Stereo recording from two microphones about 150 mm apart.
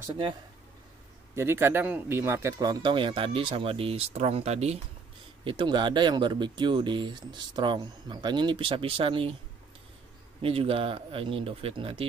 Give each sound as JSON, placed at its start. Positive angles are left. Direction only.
{"t": 1.3, "sound": "speech", "side_deg": -15}
{"t": 5.4, "sound": "speech", "side_deg": -35}
{"t": 10.4, "sound": "speech", "side_deg": -40}